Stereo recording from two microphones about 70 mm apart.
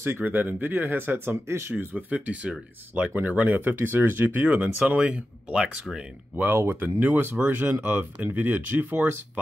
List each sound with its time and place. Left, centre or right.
0.0 s speech: right; by 5.7 s centre
6.3 s speech: right